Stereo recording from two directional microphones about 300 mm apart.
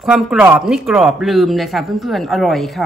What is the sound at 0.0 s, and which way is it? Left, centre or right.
Speech, centre.